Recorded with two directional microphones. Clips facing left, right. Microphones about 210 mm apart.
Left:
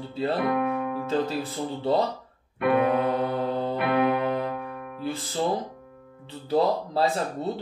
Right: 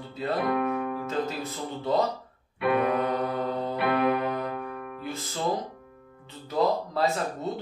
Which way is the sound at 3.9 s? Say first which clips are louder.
Left 1 dB; centre (ahead or behind).